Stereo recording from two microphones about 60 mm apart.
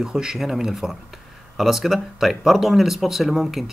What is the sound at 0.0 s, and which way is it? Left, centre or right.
Speech, centre.